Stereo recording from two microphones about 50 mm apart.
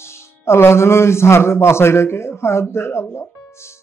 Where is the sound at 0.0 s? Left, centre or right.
Left.